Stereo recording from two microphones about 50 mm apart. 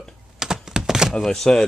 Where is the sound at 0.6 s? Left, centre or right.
Centre.